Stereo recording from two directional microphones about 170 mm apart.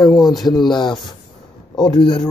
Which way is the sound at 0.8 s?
25° left (ahead or behind).